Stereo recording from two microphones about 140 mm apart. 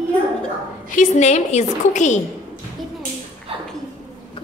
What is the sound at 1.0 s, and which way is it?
A woman's voice, 55° left (ahead or behind).